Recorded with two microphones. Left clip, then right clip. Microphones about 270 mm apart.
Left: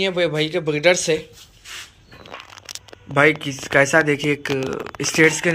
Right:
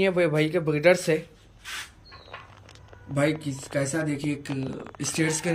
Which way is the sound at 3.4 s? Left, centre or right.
Centre.